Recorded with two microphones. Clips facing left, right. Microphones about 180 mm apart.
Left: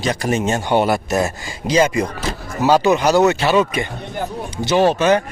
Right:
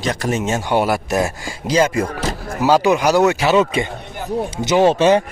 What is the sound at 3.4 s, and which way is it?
Speech, 20° right (ahead or behind).